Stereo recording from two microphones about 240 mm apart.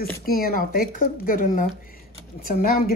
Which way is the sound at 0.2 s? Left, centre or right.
Left.